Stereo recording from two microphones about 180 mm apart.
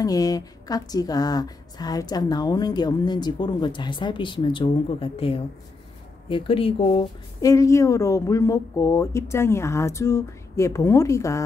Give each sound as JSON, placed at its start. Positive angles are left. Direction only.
{"t": 0.0, "sound": "a woman's voice", "side_deg": 20}
{"t": 7.3, "sound": "speech", "side_deg": 20}